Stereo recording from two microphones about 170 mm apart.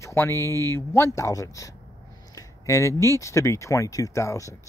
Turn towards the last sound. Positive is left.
turn(degrees=20)  # may be behind; listen again after turning